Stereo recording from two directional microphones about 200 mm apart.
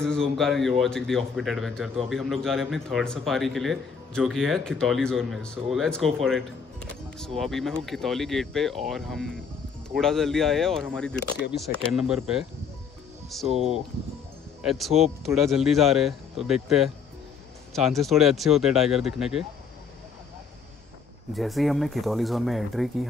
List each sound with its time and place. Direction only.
0.0 s speech: 5° left (ahead or behind)
13.5 s speech: 30° right (ahead or behind)
14.6 s speech: centre (ahead or behind)
21.4 s speech: centre (ahead or behind)